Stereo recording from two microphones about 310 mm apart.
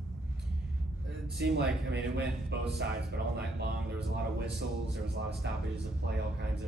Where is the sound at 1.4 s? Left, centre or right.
Right.